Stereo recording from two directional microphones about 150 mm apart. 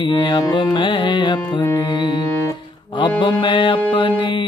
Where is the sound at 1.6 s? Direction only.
20° left (ahead or behind).